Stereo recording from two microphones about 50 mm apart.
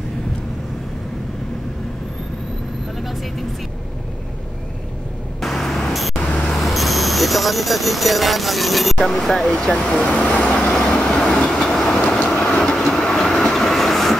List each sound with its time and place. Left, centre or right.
5.4 s vehicle: centre
6.6 s speech: centre; by 10.5 s left
10.5 s train: centre
11.6 s train: centre
12.4 s vehicle: centre
12.8 s train: centre